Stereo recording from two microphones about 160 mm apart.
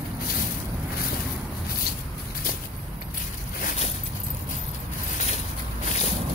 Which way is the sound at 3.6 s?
50° left (ahead or behind).